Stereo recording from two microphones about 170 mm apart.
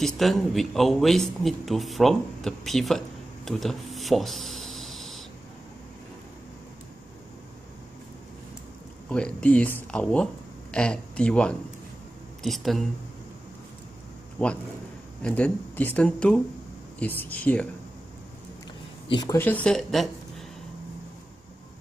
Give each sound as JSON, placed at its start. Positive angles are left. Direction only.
{"t": 0.0, "sound": "a man's voice", "side_deg": 0}
{"t": 3.4, "sound": "a sound", "side_deg": 0}
{"t": 9.1, "sound": "a man's voice", "side_deg": 5}
{"t": 14.4, "sound": "speech", "side_deg": 10}
{"t": 19.0, "sound": "speech", "side_deg": 25}
{"t": 19.3, "sound": "speech", "side_deg": 10}